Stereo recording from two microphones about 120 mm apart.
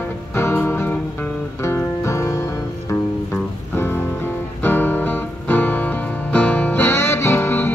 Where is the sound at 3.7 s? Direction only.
20° left (ahead or behind).